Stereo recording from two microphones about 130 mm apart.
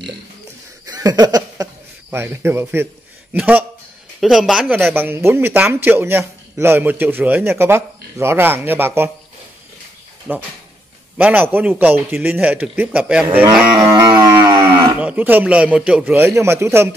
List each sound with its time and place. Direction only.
0.8 s a sound: 30° right (ahead or behind)
2.0 s speech: 20° right (ahead or behind)
4.2 s speech: centre (ahead or behind); by 9.1 s 20° right (ahead or behind)
10.3 s speech: 15° right (ahead or behind)
13.7 s livestock: 35° right (ahead or behind)
15.0 s speech: 10° right (ahead or behind)